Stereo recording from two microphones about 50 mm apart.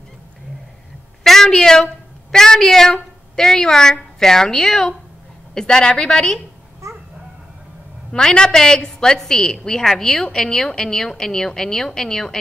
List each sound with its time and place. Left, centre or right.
1.2 s a sound: centre
2.3 s a woman's voice: centre
6.8 s dog: right
8.1 s a woman's voice: centre